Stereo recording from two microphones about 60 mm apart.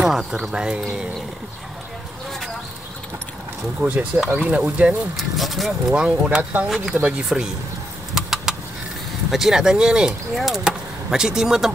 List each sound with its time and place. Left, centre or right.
0.0 s speech: centre
3.9 s speech: right
5.1 s speech: centre
6.0 s speech: right
8.1 s vehicle: centre
9.3 s speech: centre
10.3 s speech: centre